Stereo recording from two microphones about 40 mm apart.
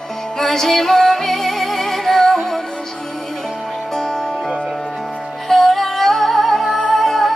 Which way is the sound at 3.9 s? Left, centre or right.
Centre.